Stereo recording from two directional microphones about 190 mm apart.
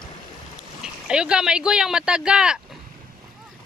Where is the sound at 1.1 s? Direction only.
5° right (ahead or behind).